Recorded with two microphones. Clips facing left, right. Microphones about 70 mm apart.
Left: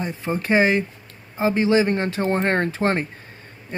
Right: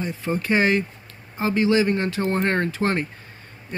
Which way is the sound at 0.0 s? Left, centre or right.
Left.